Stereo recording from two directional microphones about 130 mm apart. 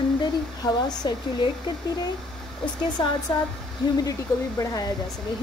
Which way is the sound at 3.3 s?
35° left (ahead or behind).